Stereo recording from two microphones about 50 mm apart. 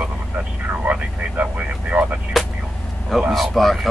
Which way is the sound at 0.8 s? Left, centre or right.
Right.